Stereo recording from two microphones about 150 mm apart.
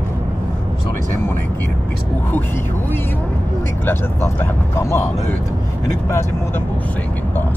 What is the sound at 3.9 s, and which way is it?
Speech, 15° left (ahead or behind).